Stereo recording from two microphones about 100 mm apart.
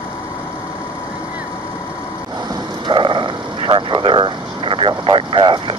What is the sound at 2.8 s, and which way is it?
Speech, 55° right (ahead or behind).